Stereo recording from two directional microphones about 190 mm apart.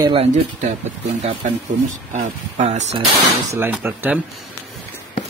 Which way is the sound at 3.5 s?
10° right (ahead or behind).